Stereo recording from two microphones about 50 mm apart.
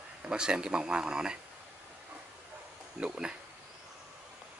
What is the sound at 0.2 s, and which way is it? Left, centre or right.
Speech, centre.